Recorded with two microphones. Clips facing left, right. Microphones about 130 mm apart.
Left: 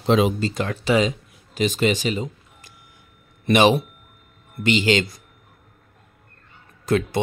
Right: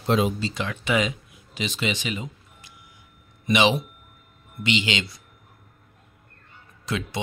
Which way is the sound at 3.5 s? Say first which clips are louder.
Left 5 dB; 45° left (ahead or behind).